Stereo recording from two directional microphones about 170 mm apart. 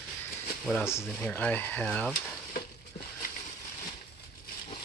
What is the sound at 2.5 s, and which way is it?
Frying, 60° left (ahead or behind).